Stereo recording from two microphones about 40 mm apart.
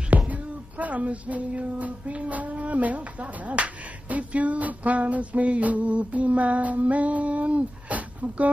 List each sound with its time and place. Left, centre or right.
0.3 s speech: right